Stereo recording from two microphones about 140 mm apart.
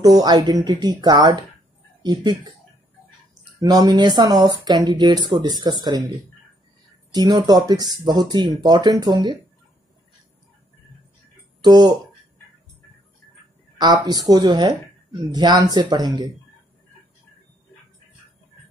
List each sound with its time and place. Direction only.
0.0 s speech: 30° right (ahead or behind)
3.5 s speech: 25° right (ahead or behind)
7.1 s speech: 30° right (ahead or behind)
11.6 s speech: 30° right (ahead or behind)
13.7 s speech: 30° right (ahead or behind)